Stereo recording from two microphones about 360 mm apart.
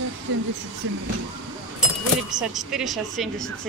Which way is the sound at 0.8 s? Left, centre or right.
Right.